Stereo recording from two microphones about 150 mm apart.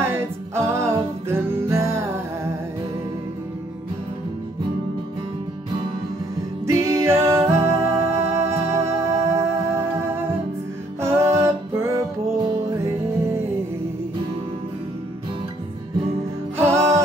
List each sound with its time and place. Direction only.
0.0 s music: 15° right (ahead or behind)
6.6 s music: 20° right (ahead or behind)
11.0 s music: 20° right (ahead or behind)
16.5 s music: 15° right (ahead or behind)